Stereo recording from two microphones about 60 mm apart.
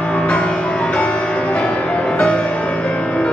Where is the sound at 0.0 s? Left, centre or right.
Centre.